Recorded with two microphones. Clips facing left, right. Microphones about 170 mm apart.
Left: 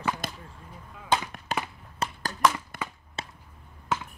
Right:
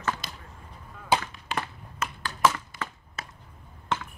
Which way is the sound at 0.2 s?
50° left (ahead or behind).